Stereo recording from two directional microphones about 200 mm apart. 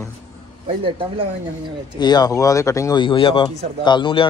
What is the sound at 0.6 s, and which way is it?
Speech, 25° right (ahead or behind).